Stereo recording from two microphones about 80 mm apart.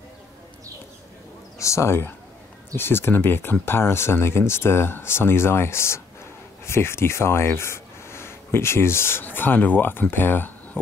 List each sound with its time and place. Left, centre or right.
1.6 s speech: left